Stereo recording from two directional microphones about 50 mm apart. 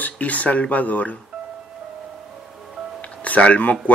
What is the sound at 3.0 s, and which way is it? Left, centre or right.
Music, left.